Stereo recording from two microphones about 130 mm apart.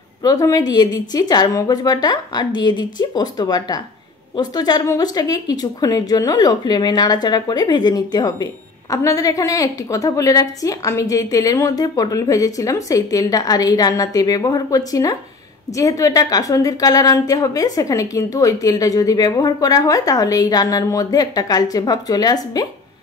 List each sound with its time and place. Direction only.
0.2 s a woman's voice: 30° left (ahead or behind)